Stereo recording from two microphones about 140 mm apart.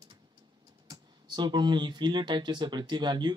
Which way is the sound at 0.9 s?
35° right (ahead or behind).